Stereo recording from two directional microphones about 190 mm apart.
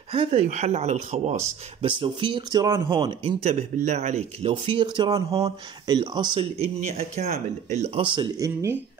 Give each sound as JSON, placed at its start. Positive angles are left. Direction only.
{"t": 0.1, "sound": "speech", "side_deg": -30}
{"t": 6.5, "sound": "speech", "side_deg": -35}